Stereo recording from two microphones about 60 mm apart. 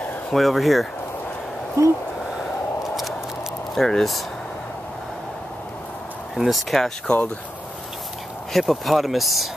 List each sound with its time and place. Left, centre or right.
0.3 s speech: centre
1.8 s speech: right
2.8 s a sound: centre
3.7 s speech: centre
6.3 s speech: centre
8.5 s speech: centre